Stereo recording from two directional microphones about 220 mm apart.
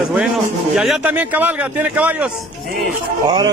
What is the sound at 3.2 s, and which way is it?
Speech, 20° right (ahead or behind).